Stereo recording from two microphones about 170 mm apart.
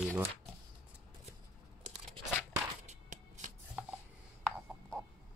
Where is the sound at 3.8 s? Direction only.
10° right (ahead or behind).